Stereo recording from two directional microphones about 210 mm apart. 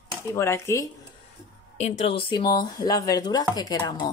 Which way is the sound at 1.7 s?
30° left (ahead or behind).